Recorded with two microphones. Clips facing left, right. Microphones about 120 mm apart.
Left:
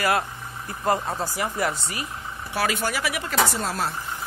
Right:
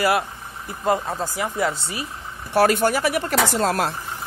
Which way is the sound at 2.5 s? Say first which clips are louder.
Right 8 dB; 50° right (ahead or behind).